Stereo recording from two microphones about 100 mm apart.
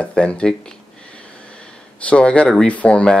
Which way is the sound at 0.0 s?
10° left (ahead or behind).